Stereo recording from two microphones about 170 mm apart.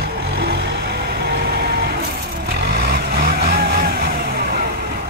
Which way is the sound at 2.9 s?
65° right (ahead or behind).